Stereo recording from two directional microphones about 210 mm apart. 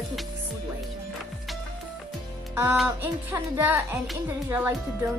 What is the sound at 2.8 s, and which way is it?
Speech, 10° right (ahead or behind).